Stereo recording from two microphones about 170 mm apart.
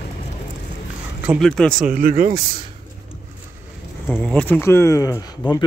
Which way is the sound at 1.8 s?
55° right (ahead or behind).